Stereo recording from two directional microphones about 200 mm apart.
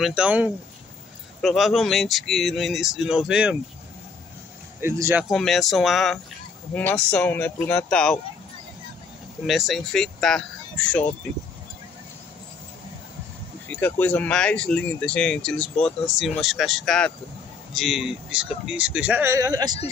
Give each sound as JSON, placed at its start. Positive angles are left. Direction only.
{"t": 0.0, "sound": "speech", "side_deg": -5}
{"t": 4.8, "sound": "speech", "side_deg": -15}
{"t": 5.3, "sound": "speech", "side_deg": 0}
{"t": 9.5, "sound": "speech", "side_deg": 0}
{"t": 13.7, "sound": "speech", "side_deg": 10}